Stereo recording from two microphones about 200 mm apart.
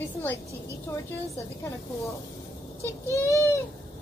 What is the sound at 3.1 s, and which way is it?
Speech, 15° left (ahead or behind).